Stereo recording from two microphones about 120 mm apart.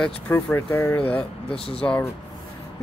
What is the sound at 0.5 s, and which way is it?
Speech, 20° left (ahead or behind).